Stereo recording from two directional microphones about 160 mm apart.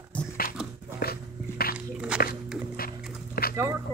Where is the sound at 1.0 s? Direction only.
70° left (ahead or behind).